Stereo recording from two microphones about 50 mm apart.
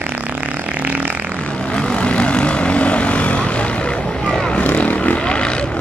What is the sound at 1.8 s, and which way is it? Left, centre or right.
Vehicle, centre.